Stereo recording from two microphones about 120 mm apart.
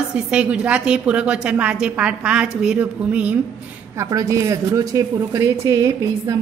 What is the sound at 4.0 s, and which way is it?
Speech, 25° right (ahead or behind).